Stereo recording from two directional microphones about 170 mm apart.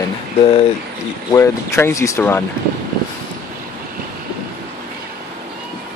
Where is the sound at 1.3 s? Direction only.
15° left (ahead or behind).